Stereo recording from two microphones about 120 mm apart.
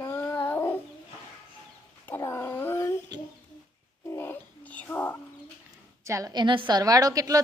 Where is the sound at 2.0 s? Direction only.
20° left (ahead or behind).